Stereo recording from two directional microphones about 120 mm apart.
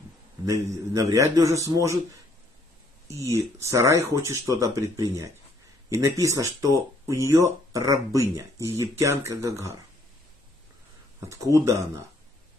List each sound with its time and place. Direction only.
1.0 s speech: 25° right (ahead or behind)
3.1 s speech: 25° right (ahead or behind)
11.1 s speech: 25° right (ahead or behind)